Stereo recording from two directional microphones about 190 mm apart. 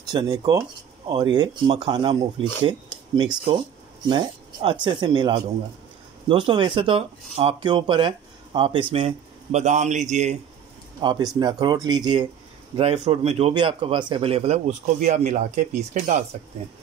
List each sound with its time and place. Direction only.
0.1 s speech: 20° right (ahead or behind)
4.1 s a man's voice: 25° right (ahead or behind)
11.0 s speech: 20° right (ahead or behind)
12.7 s a man's voice: 35° right (ahead or behind)